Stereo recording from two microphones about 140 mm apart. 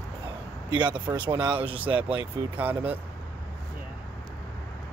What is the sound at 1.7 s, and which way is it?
Speech, 10° right (ahead or behind).